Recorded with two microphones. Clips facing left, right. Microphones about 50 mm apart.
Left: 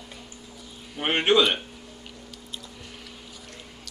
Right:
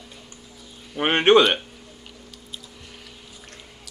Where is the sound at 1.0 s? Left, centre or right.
Right.